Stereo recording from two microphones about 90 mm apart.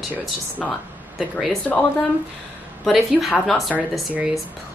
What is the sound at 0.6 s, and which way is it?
Speech, centre (ahead or behind).